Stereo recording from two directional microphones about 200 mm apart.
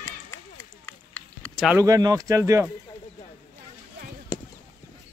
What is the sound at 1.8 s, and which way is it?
Speech, 15° right (ahead or behind).